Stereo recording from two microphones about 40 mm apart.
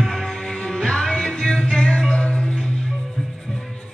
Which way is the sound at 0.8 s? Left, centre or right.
Centre.